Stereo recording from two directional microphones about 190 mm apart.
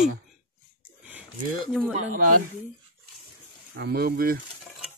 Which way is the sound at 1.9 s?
45° right (ahead or behind).